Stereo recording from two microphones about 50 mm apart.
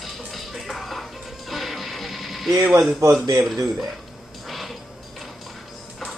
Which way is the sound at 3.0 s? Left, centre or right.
Right.